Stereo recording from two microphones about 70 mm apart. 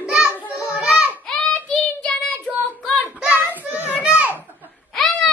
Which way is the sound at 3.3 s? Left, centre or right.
Right.